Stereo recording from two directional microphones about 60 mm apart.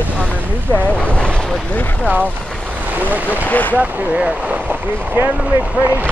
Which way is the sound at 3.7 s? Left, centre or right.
Right.